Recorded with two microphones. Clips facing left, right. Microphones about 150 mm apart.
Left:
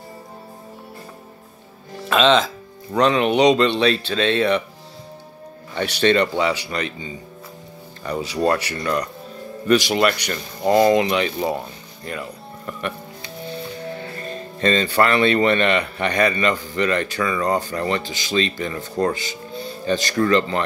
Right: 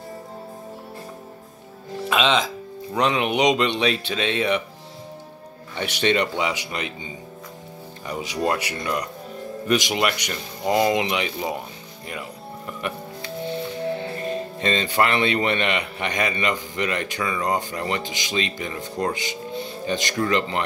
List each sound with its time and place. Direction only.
2.0 s speech: 10° right (ahead or behind)
5.8 s speech: 15° right (ahead or behind)
12.1 s music: 15° right (ahead or behind)
13.9 s speech: 15° right (ahead or behind)